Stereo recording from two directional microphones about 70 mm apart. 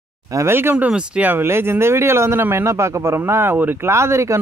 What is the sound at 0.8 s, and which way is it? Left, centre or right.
Speech, centre.